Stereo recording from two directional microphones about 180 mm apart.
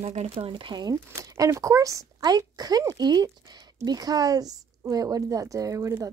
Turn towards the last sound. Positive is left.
turn(degrees=-15)  # may be behind; listen again after turning